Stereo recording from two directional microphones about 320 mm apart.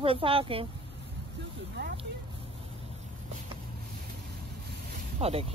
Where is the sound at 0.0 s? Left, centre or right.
Centre.